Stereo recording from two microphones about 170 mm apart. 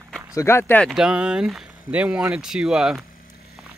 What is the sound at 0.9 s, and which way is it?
Speech, 5° right (ahead or behind).